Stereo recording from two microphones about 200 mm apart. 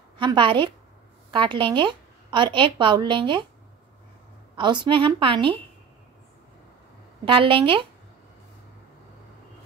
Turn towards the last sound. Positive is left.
turn(degrees=-25)  # may be behind; listen again after turning